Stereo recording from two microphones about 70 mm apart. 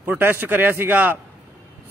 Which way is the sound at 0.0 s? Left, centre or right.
Right.